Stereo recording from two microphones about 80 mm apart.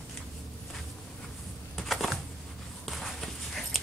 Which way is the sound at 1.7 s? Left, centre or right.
Centre.